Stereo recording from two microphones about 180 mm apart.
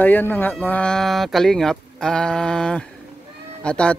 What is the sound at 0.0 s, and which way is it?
Speech, 10° left (ahead or behind).